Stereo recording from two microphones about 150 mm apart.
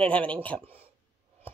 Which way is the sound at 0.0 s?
10° left (ahead or behind).